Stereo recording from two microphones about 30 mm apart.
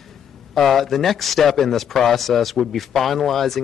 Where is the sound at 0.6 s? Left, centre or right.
Centre.